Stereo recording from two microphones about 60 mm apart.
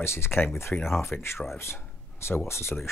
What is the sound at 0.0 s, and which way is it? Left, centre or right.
Speech, left.